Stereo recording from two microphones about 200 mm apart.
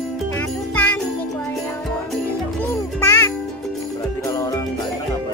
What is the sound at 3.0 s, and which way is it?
Music, 15° left (ahead or behind).